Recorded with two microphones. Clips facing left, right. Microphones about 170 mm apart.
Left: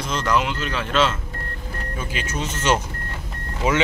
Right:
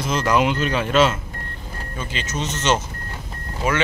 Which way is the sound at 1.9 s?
10° left (ahead or behind).